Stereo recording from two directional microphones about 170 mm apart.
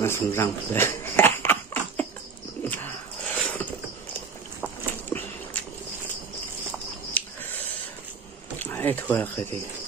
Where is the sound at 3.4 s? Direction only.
10° left (ahead or behind).